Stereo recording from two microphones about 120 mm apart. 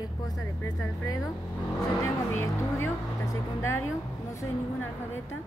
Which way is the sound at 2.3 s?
20° left (ahead or behind).